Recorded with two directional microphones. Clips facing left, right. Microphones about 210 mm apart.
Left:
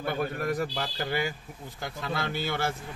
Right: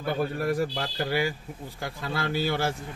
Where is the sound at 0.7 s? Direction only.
10° right (ahead or behind).